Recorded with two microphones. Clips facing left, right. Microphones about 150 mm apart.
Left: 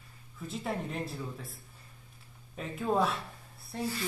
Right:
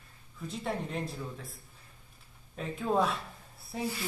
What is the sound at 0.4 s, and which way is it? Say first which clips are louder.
Speech: even; centre (ahead or behind).